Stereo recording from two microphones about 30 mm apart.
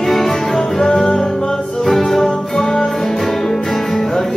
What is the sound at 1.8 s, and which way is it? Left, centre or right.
Music, centre.